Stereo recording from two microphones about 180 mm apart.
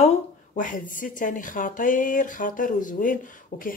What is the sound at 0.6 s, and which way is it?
Speech, 50° left (ahead or behind).